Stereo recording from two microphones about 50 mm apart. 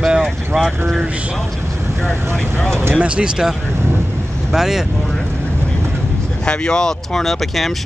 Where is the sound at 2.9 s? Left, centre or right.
Right.